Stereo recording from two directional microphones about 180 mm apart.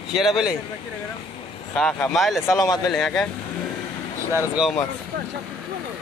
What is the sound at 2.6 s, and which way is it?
Speech, 20° left (ahead or behind).